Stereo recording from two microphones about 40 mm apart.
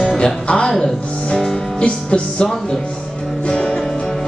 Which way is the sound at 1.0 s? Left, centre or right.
Left.